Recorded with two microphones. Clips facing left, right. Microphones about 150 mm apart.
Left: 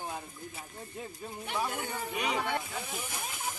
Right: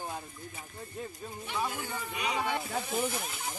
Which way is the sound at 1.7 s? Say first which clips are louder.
Left 2 dB; 60° left (ahead or behind).